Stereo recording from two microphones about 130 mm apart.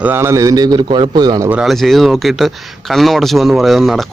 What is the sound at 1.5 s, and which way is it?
Speech, 5° right (ahead or behind).